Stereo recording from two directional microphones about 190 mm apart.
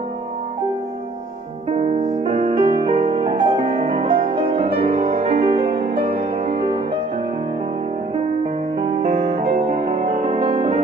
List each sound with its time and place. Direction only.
1.7 s music: 35° right (ahead or behind)
8.7 s music: 30° right (ahead or behind)